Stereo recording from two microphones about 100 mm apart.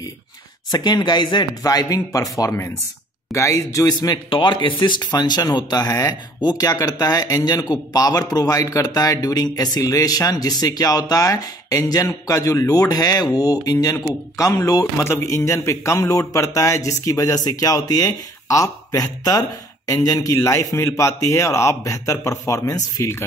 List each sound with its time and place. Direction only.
0.7 s a man's voice: 45° left (ahead or behind)